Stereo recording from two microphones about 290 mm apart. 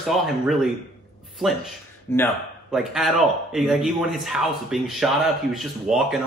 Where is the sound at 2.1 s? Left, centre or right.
Centre.